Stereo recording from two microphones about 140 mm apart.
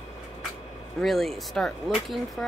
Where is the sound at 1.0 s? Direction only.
Centre (ahead or behind).